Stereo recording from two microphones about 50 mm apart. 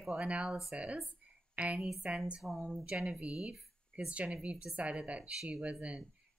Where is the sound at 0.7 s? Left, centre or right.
Right.